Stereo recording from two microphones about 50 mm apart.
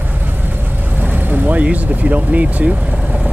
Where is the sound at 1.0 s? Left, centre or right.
Right.